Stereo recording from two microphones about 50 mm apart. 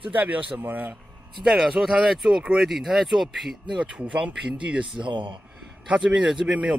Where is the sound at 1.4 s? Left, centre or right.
Centre.